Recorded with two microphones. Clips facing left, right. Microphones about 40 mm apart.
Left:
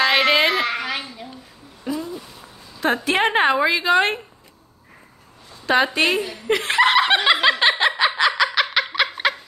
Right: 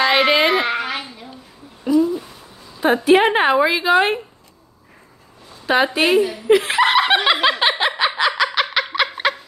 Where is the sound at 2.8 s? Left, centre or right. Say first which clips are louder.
Right 5 dB; centre.